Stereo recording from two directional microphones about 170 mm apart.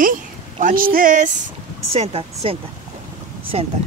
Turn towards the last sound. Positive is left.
turn(degrees=-35)  # may be behind; listen again after turning